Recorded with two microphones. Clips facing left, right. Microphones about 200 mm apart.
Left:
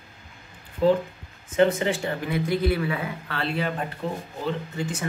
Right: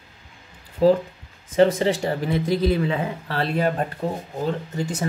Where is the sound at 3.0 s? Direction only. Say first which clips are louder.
Right 4 dB; 40° right (ahead or behind).